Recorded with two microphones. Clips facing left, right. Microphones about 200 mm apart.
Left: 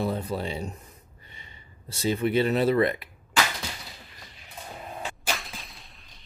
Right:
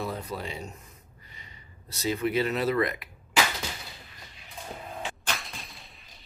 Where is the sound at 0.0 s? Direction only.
30° left (ahead or behind).